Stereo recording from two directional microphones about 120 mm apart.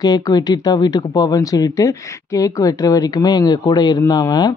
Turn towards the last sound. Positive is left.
turn(degrees=35)  # may be behind; listen again after turning